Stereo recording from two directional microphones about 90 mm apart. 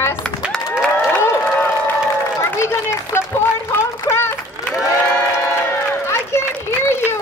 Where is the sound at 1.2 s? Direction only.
30° left (ahead or behind).